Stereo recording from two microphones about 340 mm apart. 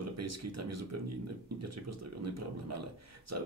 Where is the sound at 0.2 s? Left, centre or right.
Right.